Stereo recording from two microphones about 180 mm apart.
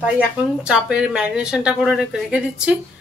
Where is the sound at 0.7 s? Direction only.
5° right (ahead or behind).